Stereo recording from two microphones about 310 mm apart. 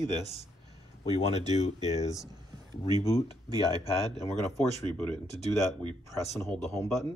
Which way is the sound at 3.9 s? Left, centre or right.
Centre.